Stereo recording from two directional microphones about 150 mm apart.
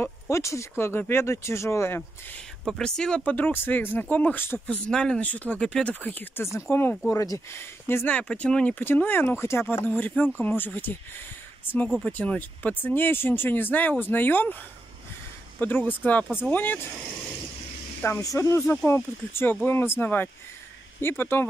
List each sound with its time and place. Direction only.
0.0 s speech: 20° left (ahead or behind)
15.6 s speech: 10° left (ahead or behind)
18.0 s speech: 20° left (ahead or behind)